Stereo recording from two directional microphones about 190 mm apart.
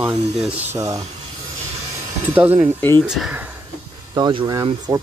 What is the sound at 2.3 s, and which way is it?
Speech, 10° right (ahead or behind).